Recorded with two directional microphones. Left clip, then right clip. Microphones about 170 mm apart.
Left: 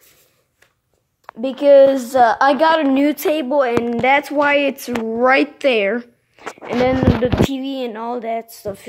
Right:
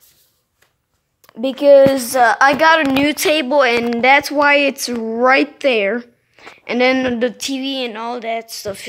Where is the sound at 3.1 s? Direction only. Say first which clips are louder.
Right 3 dB; 5° left (ahead or behind); by 8.5 s 20° left (ahead or behind).